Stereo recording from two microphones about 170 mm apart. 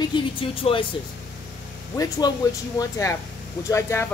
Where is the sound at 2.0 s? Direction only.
25° left (ahead or behind).